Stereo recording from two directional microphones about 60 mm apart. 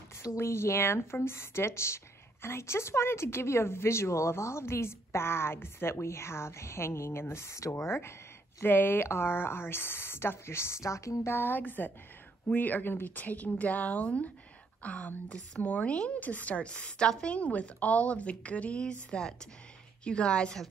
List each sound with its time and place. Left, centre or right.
0.4 s speech: left
8.6 s speech: left
11.2 s a woman's voice: left; by 20.6 s centre